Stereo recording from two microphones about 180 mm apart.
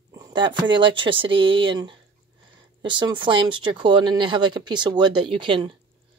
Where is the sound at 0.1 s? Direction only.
25° right (ahead or behind).